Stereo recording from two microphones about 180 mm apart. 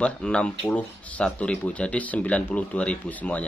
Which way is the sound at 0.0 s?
5° left (ahead or behind).